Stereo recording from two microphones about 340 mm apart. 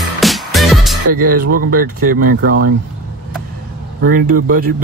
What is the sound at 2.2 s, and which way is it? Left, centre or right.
Speech, right.